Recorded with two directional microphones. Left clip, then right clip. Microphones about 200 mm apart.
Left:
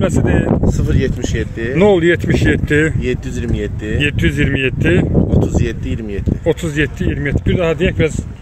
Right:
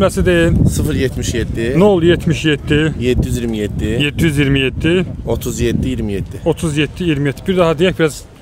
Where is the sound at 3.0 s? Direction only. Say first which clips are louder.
Right 3 dB; 65° right (ahead or behind).